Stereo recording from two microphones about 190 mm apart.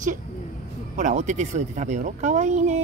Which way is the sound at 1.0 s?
40° right (ahead or behind).